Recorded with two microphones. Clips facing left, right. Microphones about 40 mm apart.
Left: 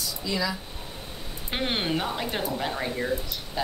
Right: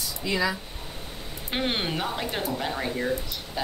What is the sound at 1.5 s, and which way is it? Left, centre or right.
Speech, centre.